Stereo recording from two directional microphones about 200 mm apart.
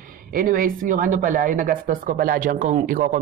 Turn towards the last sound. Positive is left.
turn(degrees=-40)  # may be behind; listen again after turning